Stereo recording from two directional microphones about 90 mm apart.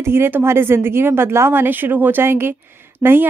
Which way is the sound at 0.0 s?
25° right (ahead or behind).